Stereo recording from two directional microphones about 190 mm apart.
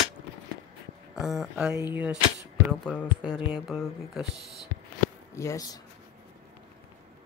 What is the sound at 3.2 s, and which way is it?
Mantra, 25° left (ahead or behind).